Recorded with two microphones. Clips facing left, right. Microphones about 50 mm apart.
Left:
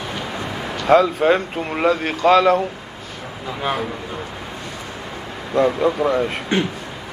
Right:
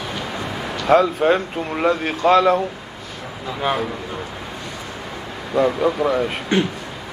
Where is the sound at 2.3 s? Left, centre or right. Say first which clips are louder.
Left 1 dB; left.